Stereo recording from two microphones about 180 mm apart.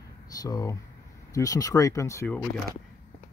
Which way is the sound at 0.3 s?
20° left (ahead or behind).